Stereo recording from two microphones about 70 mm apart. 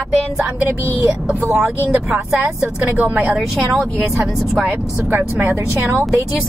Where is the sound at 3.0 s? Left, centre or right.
Right.